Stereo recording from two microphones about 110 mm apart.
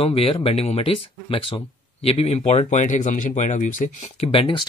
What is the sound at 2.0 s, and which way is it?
Speech, 70° left (ahead or behind).